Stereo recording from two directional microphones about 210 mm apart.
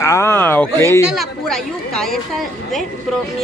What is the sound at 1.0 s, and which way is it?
Speech, centre (ahead or behind).